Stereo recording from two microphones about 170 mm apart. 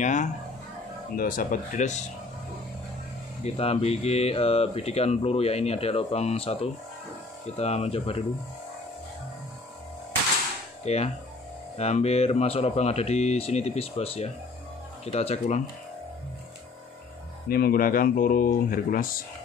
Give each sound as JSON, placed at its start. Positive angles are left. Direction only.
{"t": 0.0, "sound": "speech", "side_deg": 45}
{"t": 1.1, "sound": "speech", "side_deg": 55}
{"t": 3.4, "sound": "speech", "side_deg": 35}
{"t": 10.8, "sound": "speech", "side_deg": 40}
{"t": 17.5, "sound": "speech", "side_deg": 60}